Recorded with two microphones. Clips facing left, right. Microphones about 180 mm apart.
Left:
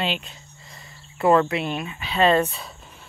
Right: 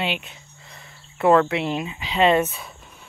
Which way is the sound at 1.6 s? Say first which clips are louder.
Right 2 dB; 20° right (ahead or behind).